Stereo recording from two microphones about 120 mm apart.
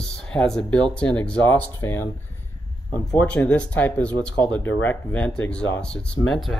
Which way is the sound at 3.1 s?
10° left (ahead or behind).